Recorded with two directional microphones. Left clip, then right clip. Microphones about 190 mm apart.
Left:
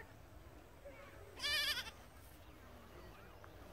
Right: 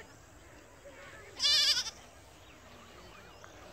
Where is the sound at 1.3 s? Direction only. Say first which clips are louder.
Right 11 dB; 20° right (ahead or behind).